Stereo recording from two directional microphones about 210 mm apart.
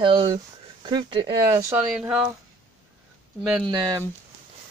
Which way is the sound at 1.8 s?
5° right (ahead or behind).